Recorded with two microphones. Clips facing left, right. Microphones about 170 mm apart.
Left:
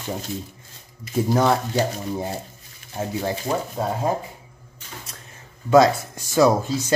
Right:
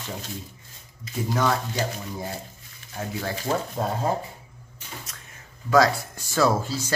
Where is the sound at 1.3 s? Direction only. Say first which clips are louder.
Left 5 dB; 35° left (ahead or behind).